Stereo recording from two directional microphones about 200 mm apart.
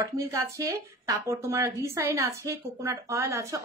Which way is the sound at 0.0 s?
15° right (ahead or behind).